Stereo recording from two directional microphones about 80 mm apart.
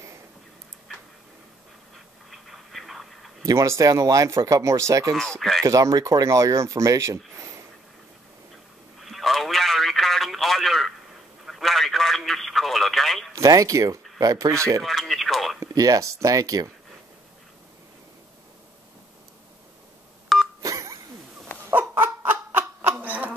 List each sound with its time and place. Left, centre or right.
2.3 s duck: centre
3.4 s speech: right
5.1 s speech: centre
5.6 s speech: right
9.0 s radio: centre
11.4 s telephone: centre
13.3 s speech: right
14.8 s radio: centre
15.6 s speech: right
20.3 s telephone dialing: centre
20.6 s a sound: right
21.6 s a sound: right